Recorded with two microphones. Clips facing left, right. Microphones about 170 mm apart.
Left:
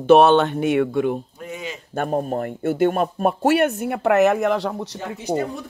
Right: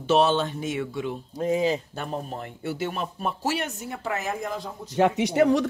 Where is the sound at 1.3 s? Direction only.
35° right (ahead or behind).